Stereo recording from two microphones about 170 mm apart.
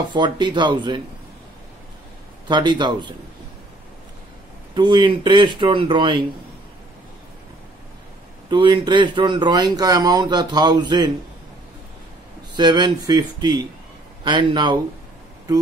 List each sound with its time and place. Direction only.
0.1 s speech: 25° right (ahead or behind)
2.4 s speech: 25° right (ahead or behind)
4.7 s speech: 25° right (ahead or behind)
8.5 s speech: 30° right (ahead or behind)
12.5 s speech: 25° right (ahead or behind)